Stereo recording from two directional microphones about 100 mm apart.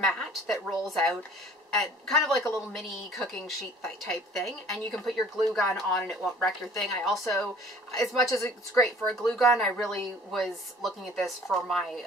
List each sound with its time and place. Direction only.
0.0 s a woman's voice: 5° left (ahead or behind)
8.2 s a woman's voice: 30° left (ahead or behind)
8.8 s a woman's voice: centre (ahead or behind)